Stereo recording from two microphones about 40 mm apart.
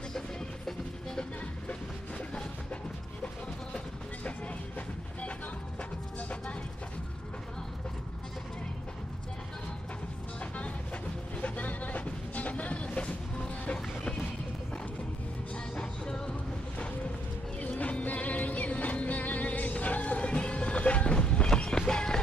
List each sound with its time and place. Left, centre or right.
1.7 s music: left
3.7 s vehicle: left
5.8 s music: left
10.4 s a sound: left
11.4 s music: left
15.5 s music: left
16.3 s music: left; by 22.2 s centre